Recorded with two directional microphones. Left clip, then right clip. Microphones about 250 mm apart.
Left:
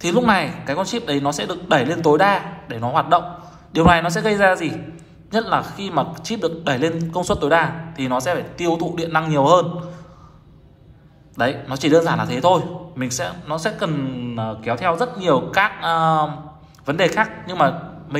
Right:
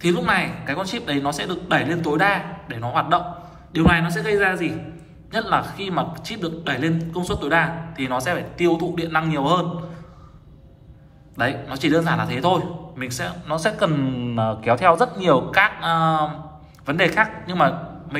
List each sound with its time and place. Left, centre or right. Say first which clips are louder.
0.0 s a man's voice: left 3 dB; centre
11.3 s a man's voice: left 2 dB; centre